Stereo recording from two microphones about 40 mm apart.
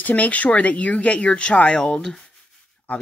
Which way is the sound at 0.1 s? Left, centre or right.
Left.